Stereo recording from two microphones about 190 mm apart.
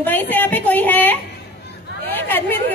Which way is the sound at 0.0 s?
10° left (ahead or behind).